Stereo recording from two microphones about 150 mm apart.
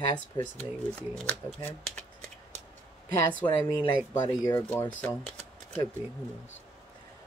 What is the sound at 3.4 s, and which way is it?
Speech, 30° left (ahead or behind).